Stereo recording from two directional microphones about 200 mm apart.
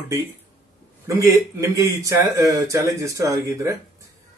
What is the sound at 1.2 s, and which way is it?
Speech, 15° right (ahead or behind).